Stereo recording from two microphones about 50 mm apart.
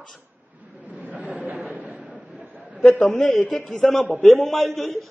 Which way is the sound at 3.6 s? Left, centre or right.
Centre.